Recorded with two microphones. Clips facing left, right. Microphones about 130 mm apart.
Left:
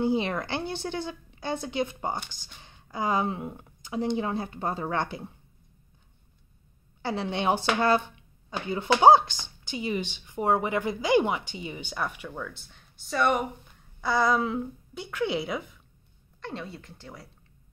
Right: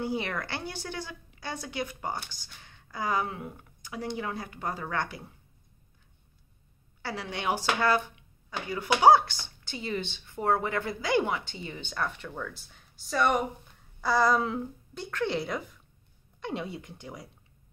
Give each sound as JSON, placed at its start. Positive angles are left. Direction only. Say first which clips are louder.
{"t": 0.0, "sound": "speech", "louder": "left 5 dB", "side_deg": 20}
{"t": 7.0, "sound": "speech", "louder": "left 6 dB", "side_deg": 25}
{"t": 16.3, "sound": "speech", "louder": "right 3 dB", "side_deg": -15}